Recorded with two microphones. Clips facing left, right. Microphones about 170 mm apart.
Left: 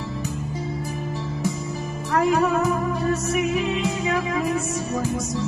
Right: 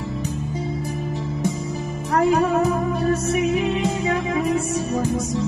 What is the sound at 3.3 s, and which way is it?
Music, 20° right (ahead or behind).